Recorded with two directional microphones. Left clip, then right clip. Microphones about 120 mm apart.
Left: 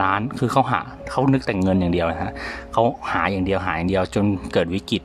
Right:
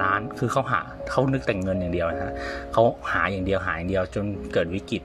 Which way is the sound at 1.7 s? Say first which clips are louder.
Left 4 dB; 35° left (ahead or behind).